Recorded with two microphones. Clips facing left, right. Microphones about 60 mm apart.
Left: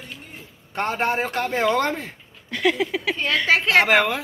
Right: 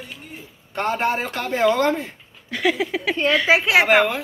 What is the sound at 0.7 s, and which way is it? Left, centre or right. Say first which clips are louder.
Speech: right 1 dB; left.